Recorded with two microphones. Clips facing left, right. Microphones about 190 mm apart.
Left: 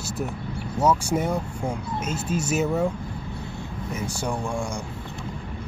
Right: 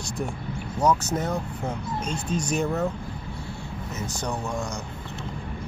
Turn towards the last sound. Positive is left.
turn(degrees=10)  # may be behind; listen again after turning